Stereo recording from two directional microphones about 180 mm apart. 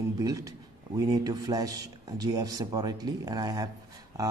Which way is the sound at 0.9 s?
20° right (ahead or behind).